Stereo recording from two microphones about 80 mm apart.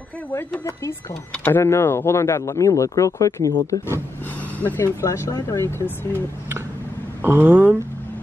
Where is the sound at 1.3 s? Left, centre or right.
Left.